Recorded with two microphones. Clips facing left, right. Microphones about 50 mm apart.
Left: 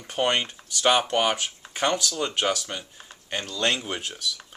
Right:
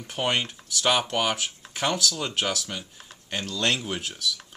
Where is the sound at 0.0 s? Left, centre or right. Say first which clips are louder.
Left 2 dB; centre.